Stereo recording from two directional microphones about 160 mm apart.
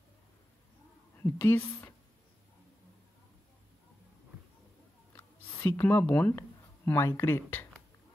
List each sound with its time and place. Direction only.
1.1 s a woman's voice: 15° left (ahead or behind)
5.1 s a sound: 15° left (ahead or behind)
6.9 s speech: 20° left (ahead or behind)